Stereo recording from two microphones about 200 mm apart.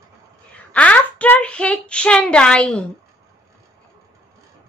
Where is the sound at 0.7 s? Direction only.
5° left (ahead or behind).